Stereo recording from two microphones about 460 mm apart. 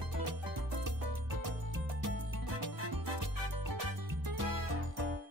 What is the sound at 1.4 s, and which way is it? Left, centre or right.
Music, right.